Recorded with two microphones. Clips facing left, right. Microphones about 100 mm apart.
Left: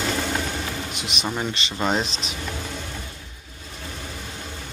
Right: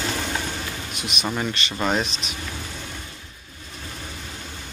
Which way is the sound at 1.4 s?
20° left (ahead or behind).